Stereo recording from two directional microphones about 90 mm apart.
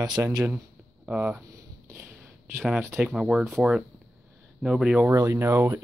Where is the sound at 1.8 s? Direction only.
25° right (ahead or behind).